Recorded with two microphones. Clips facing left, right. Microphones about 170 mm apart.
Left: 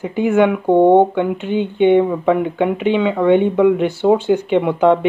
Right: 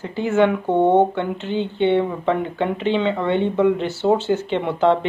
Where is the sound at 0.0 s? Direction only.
15° left (ahead or behind).